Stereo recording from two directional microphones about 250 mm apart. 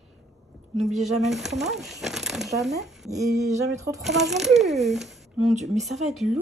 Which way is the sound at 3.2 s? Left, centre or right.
Centre.